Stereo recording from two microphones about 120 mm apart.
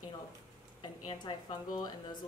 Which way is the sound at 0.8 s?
40° left (ahead or behind).